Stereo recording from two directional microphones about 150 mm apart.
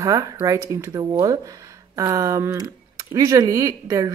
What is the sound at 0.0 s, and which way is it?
A woman's voice, 20° right (ahead or behind).